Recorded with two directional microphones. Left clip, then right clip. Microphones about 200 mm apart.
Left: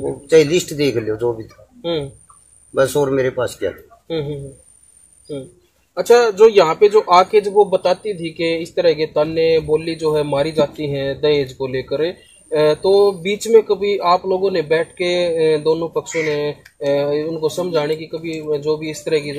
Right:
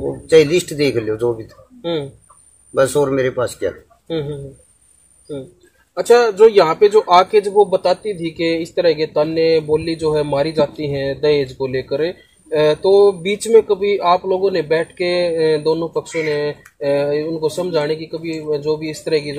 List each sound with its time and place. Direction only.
0.3 s speech: 15° right (ahead or behind)
2.7 s speech: 15° right (ahead or behind)
4.1 s a man's voice: 5° right (ahead or behind)
5.9 s a man's voice: 5° right (ahead or behind)
16.1 s speech: 20° left (ahead or behind)
16.3 s speech: 5° right (ahead or behind)